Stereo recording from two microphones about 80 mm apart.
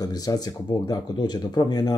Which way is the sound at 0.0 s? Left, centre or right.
Left.